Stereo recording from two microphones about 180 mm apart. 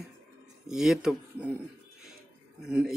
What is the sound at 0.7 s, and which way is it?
Speech, centre (ahead or behind).